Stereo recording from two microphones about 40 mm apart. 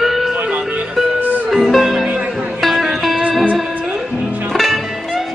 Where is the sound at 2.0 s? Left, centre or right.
Right.